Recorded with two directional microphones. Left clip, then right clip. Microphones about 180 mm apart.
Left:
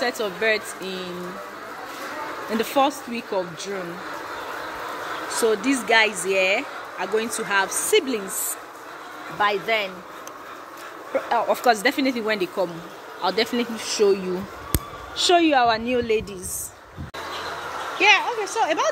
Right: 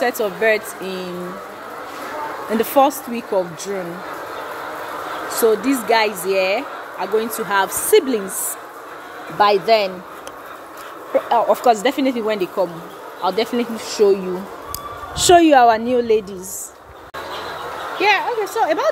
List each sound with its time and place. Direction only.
0.0 s speech: 15° right (ahead or behind)
2.5 s speech: 15° right (ahead or behind)
5.3 s a woman's voice: 10° right (ahead or behind)
9.4 s speech: 40° right (ahead or behind)
11.1 s speech: 15° right (ahead or behind)
15.1 s a woman's voice: 30° right (ahead or behind); by 16.3 s 15° right (ahead or behind)
17.9 s speech: 15° right (ahead or behind)